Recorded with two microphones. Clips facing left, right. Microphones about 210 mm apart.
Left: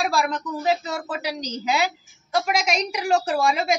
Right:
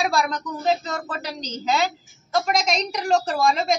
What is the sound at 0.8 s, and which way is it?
A woman's voice, 15° left (ahead or behind).